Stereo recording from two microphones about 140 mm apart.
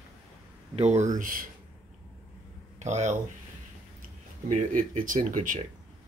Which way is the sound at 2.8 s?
55° right (ahead or behind).